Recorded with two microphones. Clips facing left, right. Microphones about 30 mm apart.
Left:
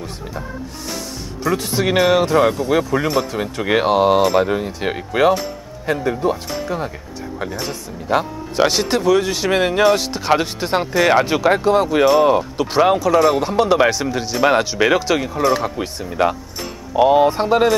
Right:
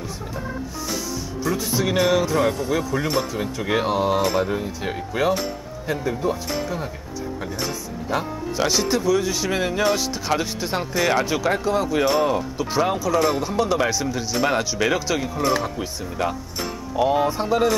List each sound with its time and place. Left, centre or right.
1.4 s speech: left
2.4 s speech: centre